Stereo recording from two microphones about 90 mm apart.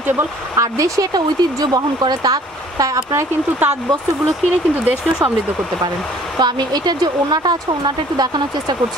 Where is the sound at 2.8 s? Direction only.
40° right (ahead or behind).